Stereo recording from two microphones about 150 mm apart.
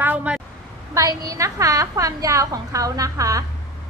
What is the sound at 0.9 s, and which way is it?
A woman's voice, 20° right (ahead or behind).